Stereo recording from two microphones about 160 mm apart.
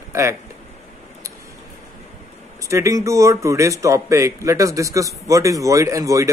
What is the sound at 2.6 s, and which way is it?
A man's voice, 20° right (ahead or behind).